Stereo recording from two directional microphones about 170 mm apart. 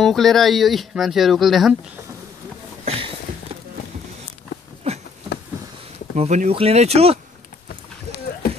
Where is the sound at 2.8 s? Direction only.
35° right (ahead or behind).